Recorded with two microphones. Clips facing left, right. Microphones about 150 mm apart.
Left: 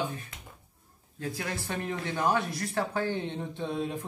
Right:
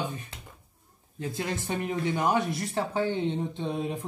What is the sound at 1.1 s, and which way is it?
Speech, 20° right (ahead or behind).